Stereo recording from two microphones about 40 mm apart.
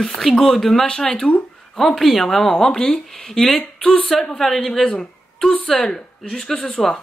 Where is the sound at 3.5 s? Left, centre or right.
Left.